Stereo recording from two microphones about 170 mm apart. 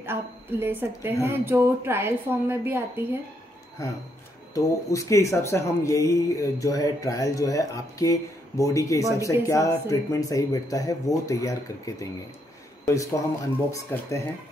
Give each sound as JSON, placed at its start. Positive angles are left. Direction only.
{"t": 0.0, "sound": "a woman's voice", "side_deg": -15}
{"t": 4.6, "sound": "a man's voice", "side_deg": 20}